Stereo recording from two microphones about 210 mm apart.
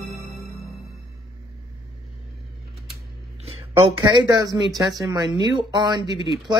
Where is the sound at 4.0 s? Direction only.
20° right (ahead or behind).